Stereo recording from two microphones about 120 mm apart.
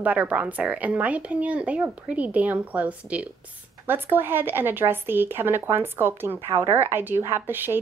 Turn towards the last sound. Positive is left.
turn(degrees=-15)  # may be behind; listen again after turning